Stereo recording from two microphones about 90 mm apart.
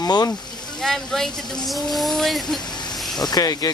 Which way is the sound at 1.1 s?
5° left (ahead or behind).